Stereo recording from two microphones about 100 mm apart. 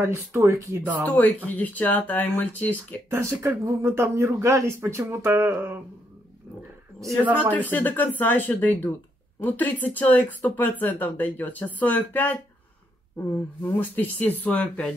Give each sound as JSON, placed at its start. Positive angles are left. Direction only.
{"t": 0.0, "sound": "speech", "side_deg": -25}
{"t": 1.0, "sound": "speech", "side_deg": 15}
{"t": 3.1, "sound": "speech", "side_deg": -25}
{"t": 7.5, "sound": "speech", "side_deg": 20}
{"t": 13.7, "sound": "speech", "side_deg": 20}